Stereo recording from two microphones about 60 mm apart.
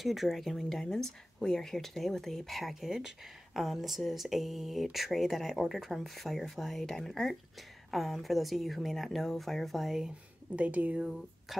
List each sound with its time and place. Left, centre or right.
0.0 s speech: centre
10.0 s speech: right
11.0 s speech: centre